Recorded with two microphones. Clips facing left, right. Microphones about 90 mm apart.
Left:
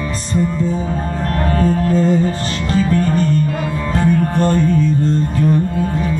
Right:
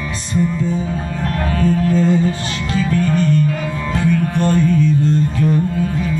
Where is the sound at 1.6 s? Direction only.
40° left (ahead or behind).